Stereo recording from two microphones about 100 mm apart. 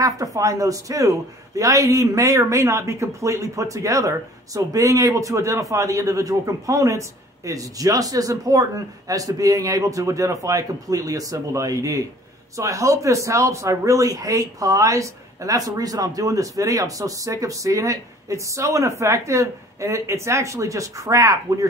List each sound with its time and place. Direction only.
0.0 s a man's voice: 35° right (ahead or behind)